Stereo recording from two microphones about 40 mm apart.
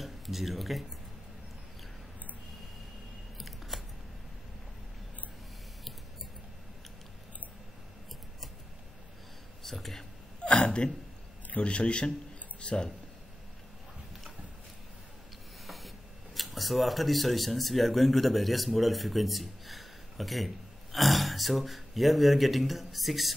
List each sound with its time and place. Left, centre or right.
0.0 s speech: centre
3.3 s scissors: centre
9.6 s a sound: centre
10.4 s hiccup: left
11.5 s a man's voice: left
15.6 s hiss: centre
16.3 s speech: centre